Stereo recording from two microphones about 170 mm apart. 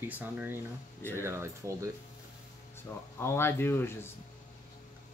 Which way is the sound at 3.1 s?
15° left (ahead or behind).